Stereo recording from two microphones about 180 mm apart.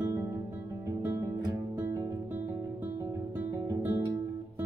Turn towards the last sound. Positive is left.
turn(degrees=-15)  # may be behind; listen again after turning